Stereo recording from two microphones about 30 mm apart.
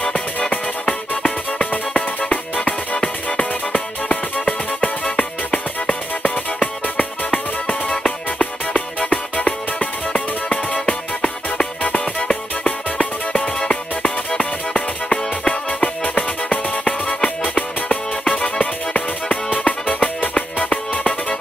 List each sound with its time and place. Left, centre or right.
0.8 s music: left
4.8 s music: left
10.7 s music: left
16.4 s music: left
19.2 s music: left
20.3 s music: left